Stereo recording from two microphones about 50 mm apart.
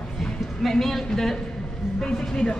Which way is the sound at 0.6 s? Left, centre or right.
Centre.